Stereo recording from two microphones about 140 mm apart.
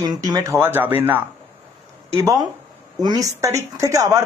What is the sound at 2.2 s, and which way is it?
A woman's voice, 25° right (ahead or behind).